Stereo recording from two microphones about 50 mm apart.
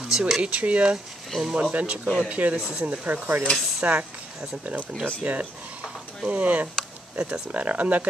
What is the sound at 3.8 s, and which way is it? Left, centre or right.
Speech, right.